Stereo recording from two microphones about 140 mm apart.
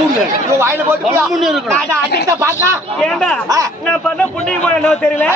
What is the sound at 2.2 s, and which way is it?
Speech, 20° right (ahead or behind).